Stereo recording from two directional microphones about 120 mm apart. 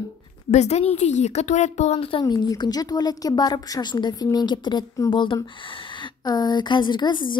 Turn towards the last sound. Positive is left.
turn(degrees=40)  # may be behind; listen again after turning